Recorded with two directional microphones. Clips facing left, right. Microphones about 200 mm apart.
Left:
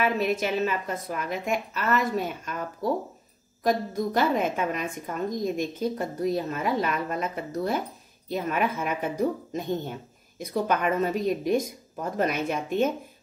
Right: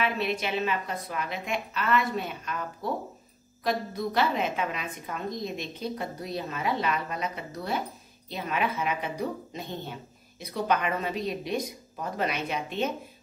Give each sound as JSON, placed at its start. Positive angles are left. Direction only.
{"t": 0.0, "sound": "a woman's voice", "side_deg": 45}